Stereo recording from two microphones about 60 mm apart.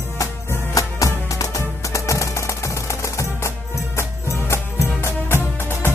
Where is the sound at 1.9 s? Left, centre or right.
Left.